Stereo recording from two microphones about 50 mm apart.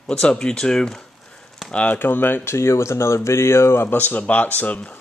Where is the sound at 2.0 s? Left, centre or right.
Left.